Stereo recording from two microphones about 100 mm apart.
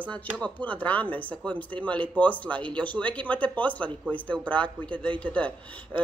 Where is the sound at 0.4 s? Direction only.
15° left (ahead or behind).